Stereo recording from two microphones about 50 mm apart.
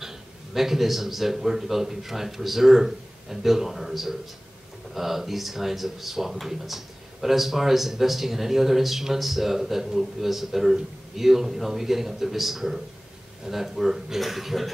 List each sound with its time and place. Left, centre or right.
0.6 s speech: centre